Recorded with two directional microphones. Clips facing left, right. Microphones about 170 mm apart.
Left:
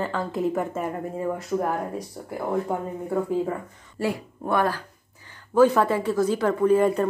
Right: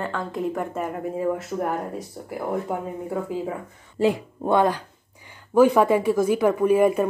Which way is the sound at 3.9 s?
20° right (ahead or behind).